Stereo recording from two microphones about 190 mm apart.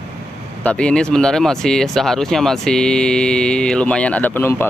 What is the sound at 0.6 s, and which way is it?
Speech, 5° left (ahead or behind).